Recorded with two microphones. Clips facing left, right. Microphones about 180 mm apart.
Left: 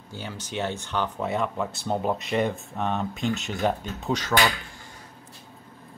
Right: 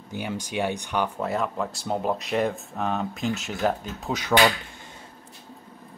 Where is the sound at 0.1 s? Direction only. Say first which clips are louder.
Right 4 dB; 15° right (ahead or behind).